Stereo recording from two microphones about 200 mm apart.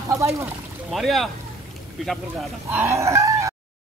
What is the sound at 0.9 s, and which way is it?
Speech, centre (ahead or behind).